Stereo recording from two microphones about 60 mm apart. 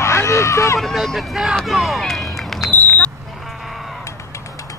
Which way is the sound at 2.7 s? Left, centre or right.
Left.